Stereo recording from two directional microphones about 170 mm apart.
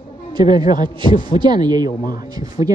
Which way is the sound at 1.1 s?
50° left (ahead or behind).